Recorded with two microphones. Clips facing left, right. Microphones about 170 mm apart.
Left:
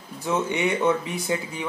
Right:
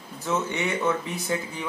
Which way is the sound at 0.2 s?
15° left (ahead or behind).